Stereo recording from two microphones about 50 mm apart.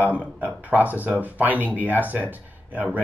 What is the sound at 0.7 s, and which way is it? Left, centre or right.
Speech, right.